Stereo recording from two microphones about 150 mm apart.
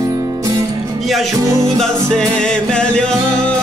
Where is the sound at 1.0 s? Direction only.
Centre (ahead or behind).